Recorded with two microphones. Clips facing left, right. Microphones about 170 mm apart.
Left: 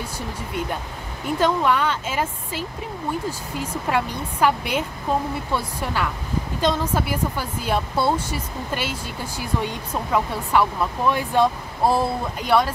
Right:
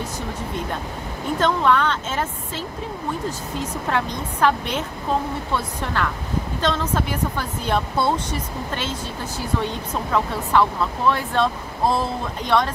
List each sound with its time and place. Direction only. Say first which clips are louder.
1.4 s speech: right 1 dB; 10° left (ahead or behind)